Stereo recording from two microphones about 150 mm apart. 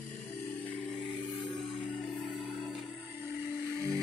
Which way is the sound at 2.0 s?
Centre (ahead or behind).